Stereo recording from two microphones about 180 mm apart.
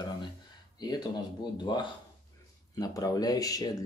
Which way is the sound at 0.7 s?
20° left (ahead or behind).